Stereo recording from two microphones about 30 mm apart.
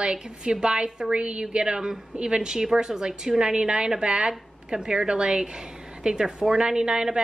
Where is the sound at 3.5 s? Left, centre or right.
Right.